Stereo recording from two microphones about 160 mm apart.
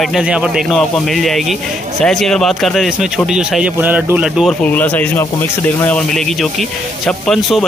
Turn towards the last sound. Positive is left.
turn(degrees=0)  # may be behind; listen again after turning